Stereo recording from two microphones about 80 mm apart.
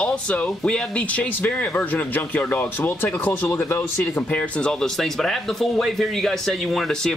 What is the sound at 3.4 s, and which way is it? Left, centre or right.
Speech, left.